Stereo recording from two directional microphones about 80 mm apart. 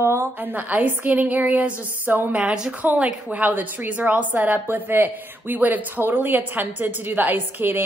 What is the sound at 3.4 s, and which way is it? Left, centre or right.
Speech, right.